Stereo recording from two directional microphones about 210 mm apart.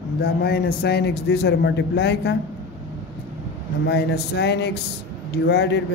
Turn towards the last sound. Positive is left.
turn(degrees=50)  # may be behind; listen again after turning